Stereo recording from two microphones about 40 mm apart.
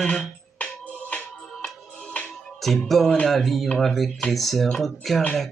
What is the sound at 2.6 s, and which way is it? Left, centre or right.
Speech, centre.